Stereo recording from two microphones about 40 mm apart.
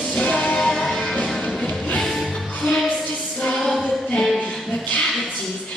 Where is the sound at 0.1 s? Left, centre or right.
Left.